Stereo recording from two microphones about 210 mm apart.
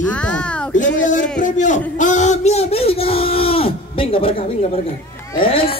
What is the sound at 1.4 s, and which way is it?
A man's voice, 35° left (ahead or behind).